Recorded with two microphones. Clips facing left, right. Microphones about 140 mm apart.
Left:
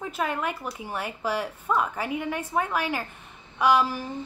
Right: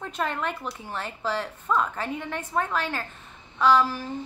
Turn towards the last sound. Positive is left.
turn(degrees=15)  # may be behind; listen again after turning